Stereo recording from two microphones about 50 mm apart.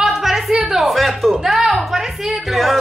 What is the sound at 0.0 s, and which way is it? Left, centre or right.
Music, centre.